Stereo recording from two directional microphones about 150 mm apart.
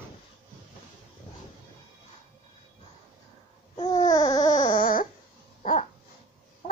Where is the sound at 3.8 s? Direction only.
25° left (ahead or behind).